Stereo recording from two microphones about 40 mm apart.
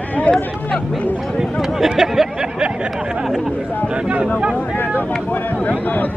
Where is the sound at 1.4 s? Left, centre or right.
Centre.